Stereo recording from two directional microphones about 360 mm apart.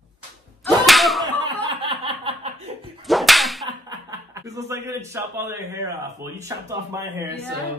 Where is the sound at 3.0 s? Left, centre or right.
Centre.